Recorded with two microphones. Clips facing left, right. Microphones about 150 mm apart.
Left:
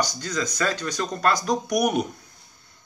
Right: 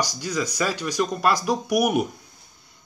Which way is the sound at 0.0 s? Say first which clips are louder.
Right 1 dB; 10° right (ahead or behind).